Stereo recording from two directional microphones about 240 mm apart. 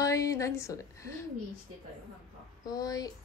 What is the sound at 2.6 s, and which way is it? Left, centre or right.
Speech, centre.